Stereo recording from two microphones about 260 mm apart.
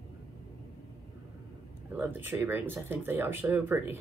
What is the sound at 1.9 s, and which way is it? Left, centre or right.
Speech, centre.